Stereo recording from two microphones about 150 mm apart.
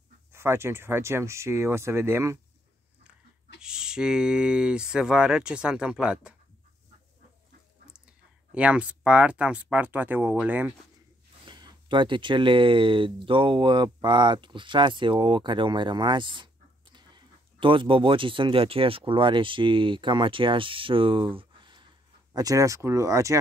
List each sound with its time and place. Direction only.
0.3 s speech: 15° right (ahead or behind)
3.5 s speech: 5° right (ahead or behind)
8.5 s speech: 10° right (ahead or behind)
11.4 s speech: 30° right (ahead or behind)